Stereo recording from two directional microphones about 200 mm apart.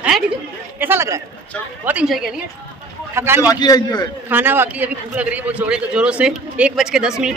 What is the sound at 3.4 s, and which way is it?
Speech, 20° left (ahead or behind).